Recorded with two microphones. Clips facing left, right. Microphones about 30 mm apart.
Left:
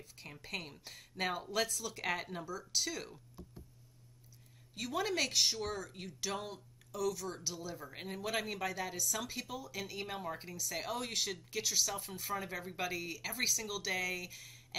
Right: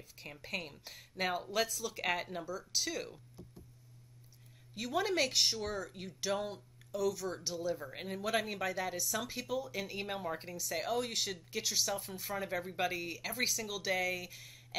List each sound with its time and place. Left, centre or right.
0.0 s speech: centre
4.7 s speech: centre
11.9 s speech: centre